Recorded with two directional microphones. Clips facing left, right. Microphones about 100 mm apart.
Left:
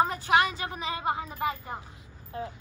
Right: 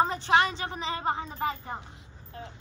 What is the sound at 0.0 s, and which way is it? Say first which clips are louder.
Speech: even; 30° right (ahead or behind).